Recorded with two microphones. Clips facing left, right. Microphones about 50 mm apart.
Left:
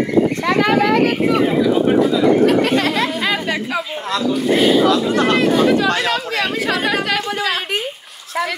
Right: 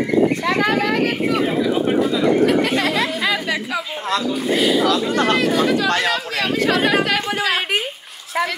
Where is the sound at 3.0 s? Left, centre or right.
Left.